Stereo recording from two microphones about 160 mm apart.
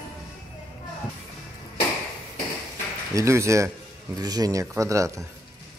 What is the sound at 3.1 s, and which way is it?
Speech, 20° right (ahead or behind).